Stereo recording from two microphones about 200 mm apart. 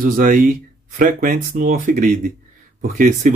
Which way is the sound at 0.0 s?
40° right (ahead or behind).